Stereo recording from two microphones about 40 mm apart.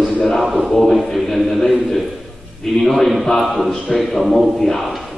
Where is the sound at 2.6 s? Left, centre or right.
Centre.